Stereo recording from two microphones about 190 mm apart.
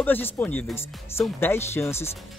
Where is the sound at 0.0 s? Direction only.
10° left (ahead or behind).